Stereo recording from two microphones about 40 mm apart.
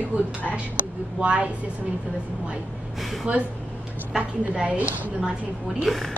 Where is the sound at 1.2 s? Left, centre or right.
Right.